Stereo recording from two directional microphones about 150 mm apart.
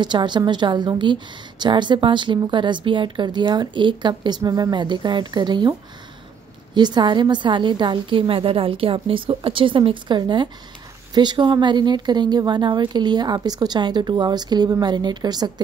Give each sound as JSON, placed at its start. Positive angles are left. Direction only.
{"t": 0.0, "sound": "a woman's voice", "side_deg": -30}